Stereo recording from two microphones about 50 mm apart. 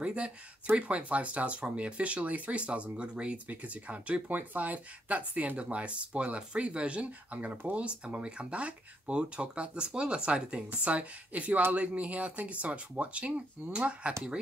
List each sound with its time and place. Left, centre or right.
0.0 s speech: right